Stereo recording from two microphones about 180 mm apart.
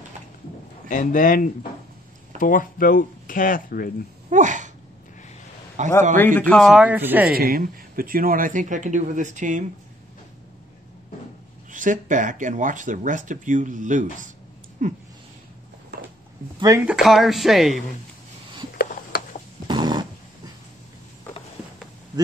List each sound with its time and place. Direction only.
0.8 s speech: 45° left (ahead or behind)
4.3 s speech: 45° right (ahead or behind)
5.8 s speech: 45° right (ahead or behind)
6.1 s speech: 10° left (ahead or behind); by 7.2 s 10° right (ahead or behind)
7.2 s speech: 55° right (ahead or behind)
11.7 s speech: 45° right (ahead or behind)
16.5 s speech: 20° right (ahead or behind)
16.8 s speech: 5° right (ahead or behind)
18.7 s a sound: 60° left (ahead or behind)
19.7 s dog: 25° right (ahead or behind)